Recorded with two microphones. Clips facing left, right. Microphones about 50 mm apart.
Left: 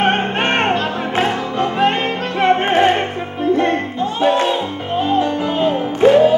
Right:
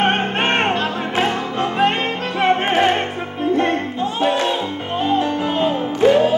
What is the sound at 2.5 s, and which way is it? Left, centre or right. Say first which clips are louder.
Music: left 3 dB; left.